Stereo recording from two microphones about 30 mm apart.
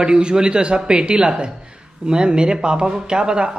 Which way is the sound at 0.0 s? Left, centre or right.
Right.